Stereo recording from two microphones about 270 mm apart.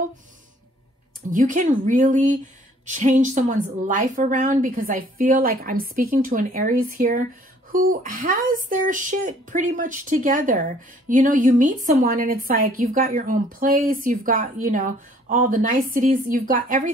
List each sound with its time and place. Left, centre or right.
1.3 s speech: right